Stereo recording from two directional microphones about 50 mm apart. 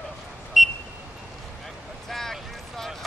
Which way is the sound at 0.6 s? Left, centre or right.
Centre.